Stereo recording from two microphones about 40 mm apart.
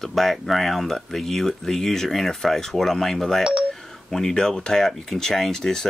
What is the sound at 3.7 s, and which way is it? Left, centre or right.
Speech, centre.